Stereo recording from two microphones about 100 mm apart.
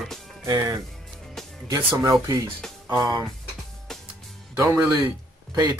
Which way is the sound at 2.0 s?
35° right (ahead or behind).